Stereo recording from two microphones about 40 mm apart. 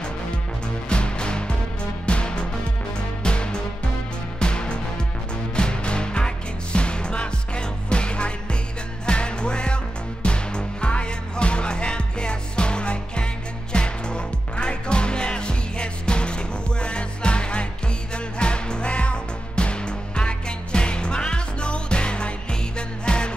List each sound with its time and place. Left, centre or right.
0.8 s music: left